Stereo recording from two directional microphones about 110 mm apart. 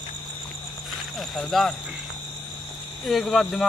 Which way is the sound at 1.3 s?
Centre (ahead or behind).